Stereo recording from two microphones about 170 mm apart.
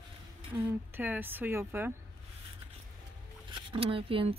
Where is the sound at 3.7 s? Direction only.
30° right (ahead or behind).